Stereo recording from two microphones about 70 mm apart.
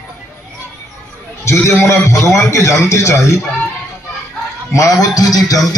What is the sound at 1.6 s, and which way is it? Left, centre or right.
A man's voice, left.